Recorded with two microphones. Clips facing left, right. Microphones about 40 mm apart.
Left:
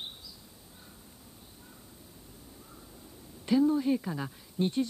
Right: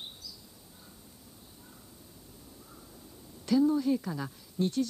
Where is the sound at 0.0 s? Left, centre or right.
Left.